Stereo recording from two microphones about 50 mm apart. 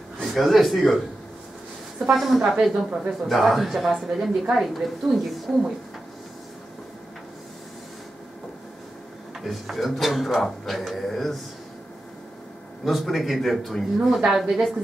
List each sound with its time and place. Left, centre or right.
0.3 s a woman's voice: centre
3.3 s a woman's voice: centre
9.4 s a woman's voice: centre
12.8 s a woman's voice: centre